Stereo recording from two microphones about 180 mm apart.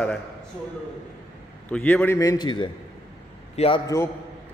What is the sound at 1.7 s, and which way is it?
A man's voice, 10° left (ahead or behind).